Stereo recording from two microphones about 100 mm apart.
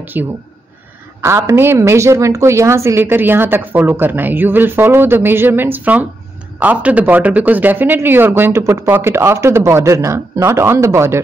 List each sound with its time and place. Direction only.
0.0 s a woman's voice: 20° right (ahead or behind)